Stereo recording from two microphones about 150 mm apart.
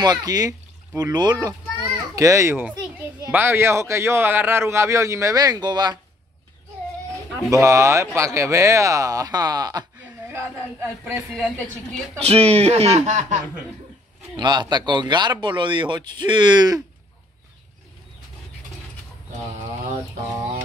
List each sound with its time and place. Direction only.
0.0 s a man's voice: 25° right (ahead or behind)
7.3 s a man's voice: 20° right (ahead or behind)
10.3 s speech: 15° right (ahead or behind)
12.2 s speech: 45° right (ahead or behind)
14.3 s speech: 30° right (ahead or behind)